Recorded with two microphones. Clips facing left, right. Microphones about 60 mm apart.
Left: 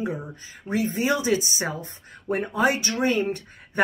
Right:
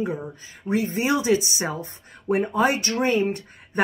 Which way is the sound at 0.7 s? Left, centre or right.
Centre.